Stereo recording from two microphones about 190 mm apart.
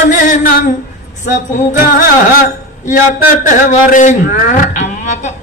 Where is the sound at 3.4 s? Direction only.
45° left (ahead or behind).